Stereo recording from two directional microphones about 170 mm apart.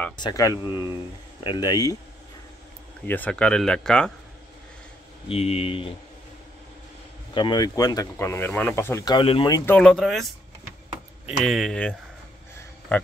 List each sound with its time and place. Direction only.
0.2 s speech: 20° left (ahead or behind)
3.1 s speech: 10° left (ahead or behind)
5.3 s speech: 35° left (ahead or behind)
7.3 s speech: 25° left (ahead or behind)
9.1 s speech: 30° left (ahead or behind)
9.7 s speech: 5° left (ahead or behind)